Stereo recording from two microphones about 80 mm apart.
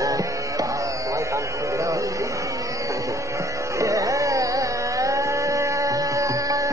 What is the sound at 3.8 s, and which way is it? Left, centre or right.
Music, right.